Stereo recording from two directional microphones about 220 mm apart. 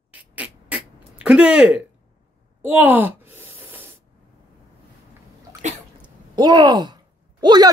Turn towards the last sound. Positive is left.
turn(degrees=-20)  # may be behind; listen again after turning